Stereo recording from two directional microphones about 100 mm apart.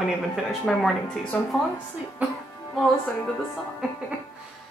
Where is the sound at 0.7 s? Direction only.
5° left (ahead or behind).